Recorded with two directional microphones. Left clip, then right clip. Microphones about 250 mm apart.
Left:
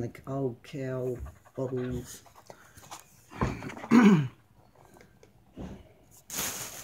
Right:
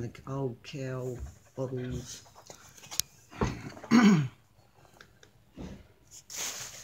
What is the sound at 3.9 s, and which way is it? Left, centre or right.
Throat clearing, centre.